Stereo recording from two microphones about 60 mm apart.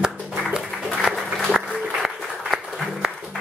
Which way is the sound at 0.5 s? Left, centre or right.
Centre.